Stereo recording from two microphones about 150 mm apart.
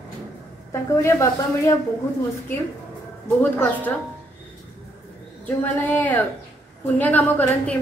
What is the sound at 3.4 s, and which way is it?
Speech, 10° left (ahead or behind).